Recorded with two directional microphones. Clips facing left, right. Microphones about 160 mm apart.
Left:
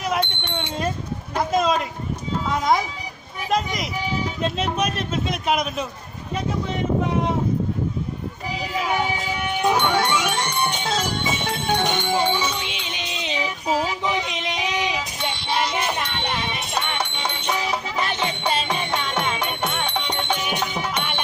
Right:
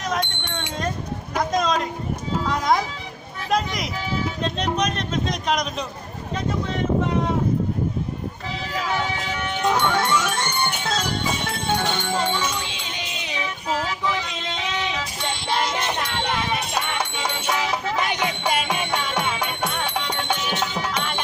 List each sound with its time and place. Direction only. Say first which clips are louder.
1.3 s a man's voice: left 1 dB; 5° left (ahead or behind)
8.7 s music: left 2 dB; 15° left (ahead or behind)
11.7 s music: left 2 dB; 15° left (ahead or behind)
17.0 s music: right 1 dB; 10° right (ahead or behind)
20.3 s music: even; 10° left (ahead or behind)